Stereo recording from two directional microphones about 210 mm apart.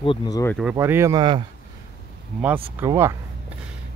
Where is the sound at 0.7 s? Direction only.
15° right (ahead or behind).